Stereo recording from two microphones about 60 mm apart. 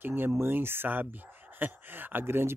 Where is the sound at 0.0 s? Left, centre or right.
Right.